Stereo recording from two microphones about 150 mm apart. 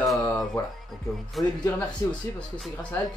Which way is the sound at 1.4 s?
Centre (ahead or behind).